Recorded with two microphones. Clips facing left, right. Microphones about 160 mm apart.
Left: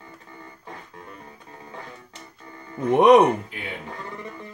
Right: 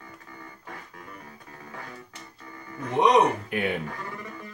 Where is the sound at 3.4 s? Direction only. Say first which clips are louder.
Right 9 dB; 60° right (ahead or behind).